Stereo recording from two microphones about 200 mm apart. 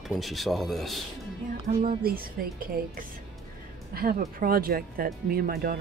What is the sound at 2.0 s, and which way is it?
Speech, 50° right (ahead or behind).